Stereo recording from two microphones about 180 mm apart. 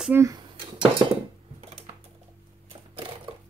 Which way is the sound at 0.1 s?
20° right (ahead or behind).